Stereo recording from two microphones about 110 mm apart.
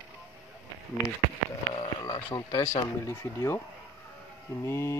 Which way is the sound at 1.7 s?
45° left (ahead or behind).